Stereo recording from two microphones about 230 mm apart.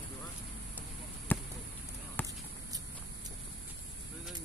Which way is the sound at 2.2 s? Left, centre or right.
Centre.